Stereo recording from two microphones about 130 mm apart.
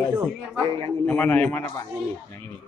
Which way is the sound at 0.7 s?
40° right (ahead or behind).